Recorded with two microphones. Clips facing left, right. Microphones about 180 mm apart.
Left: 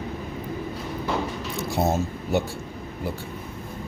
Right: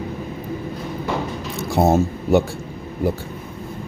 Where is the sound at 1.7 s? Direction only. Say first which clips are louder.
Right 8 dB; 60° right (ahead or behind).